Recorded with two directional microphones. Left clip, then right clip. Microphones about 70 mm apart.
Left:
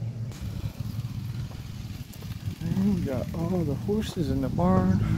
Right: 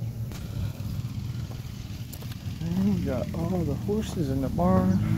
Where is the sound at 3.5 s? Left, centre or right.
Left.